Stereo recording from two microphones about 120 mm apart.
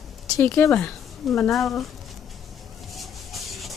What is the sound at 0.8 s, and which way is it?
Speech, 5° left (ahead or behind).